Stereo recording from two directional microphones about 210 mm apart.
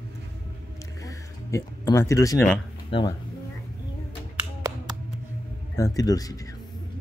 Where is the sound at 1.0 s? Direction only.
15° left (ahead or behind).